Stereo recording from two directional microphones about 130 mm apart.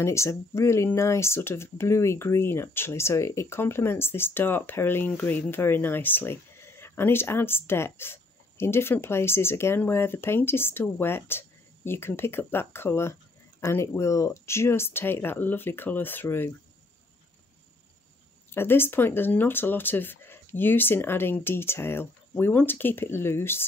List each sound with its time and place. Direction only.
0.0 s speech: 20° left (ahead or behind)
18.5 s speech: 15° left (ahead or behind)